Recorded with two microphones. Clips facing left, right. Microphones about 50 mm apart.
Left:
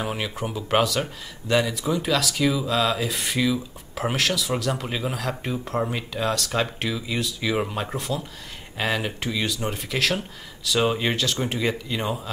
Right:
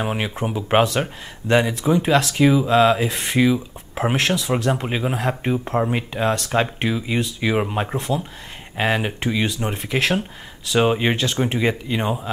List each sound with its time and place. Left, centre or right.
0.0 s speech: right